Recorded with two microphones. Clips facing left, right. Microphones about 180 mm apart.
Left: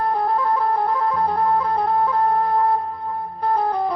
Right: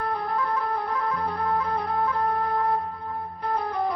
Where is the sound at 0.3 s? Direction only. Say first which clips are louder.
Left 6 dB; 30° left (ahead or behind).